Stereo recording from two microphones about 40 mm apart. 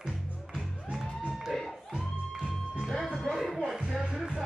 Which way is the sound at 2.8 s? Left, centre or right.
Centre.